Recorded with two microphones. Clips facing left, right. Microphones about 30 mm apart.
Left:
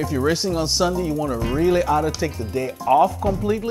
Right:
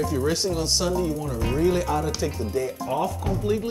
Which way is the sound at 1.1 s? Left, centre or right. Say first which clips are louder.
Left 4 dB; left.